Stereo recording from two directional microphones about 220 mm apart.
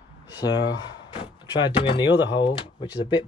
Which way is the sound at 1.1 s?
20° left (ahead or behind).